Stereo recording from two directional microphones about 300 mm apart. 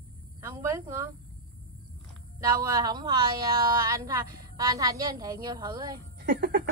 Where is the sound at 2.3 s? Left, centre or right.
Centre.